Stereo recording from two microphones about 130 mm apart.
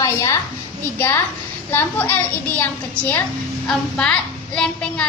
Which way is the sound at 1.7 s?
15° left (ahead or behind).